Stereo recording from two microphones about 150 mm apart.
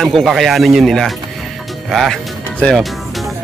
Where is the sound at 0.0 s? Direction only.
Centre (ahead or behind).